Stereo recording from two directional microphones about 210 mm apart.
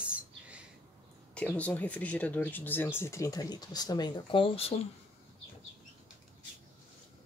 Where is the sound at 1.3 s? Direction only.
5° left (ahead or behind); by 4.7 s 25° left (ahead or behind).